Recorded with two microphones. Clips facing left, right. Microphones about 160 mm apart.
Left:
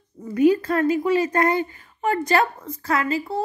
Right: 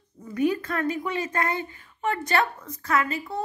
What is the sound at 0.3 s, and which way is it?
Speech, 30° left (ahead or behind).